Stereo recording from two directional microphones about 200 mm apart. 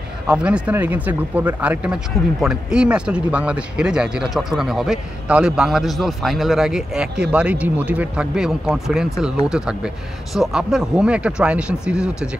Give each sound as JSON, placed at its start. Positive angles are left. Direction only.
{"t": 0.3, "sound": "speech", "side_deg": -5}
{"t": 10.3, "sound": "speech", "side_deg": 0}